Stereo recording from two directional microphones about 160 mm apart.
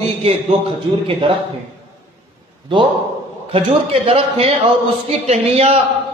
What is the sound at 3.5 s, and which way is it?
A man's voice, 35° right (ahead or behind).